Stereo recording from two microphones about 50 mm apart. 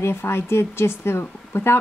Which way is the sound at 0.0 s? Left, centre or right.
Left.